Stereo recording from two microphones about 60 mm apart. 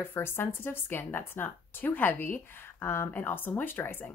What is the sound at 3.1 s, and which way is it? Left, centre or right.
A woman's voice, left.